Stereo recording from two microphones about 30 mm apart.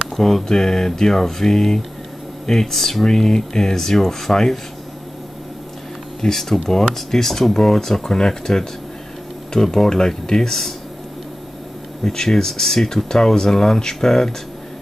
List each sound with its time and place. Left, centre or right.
0.1 s speech: centre
6.2 s speech: centre
12.0 s speech: centre